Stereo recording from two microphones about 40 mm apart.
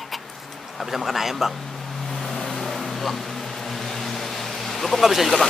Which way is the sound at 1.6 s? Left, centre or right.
Centre.